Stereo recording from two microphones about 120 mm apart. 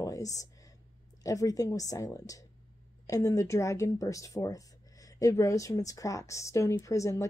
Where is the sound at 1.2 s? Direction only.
30° left (ahead or behind).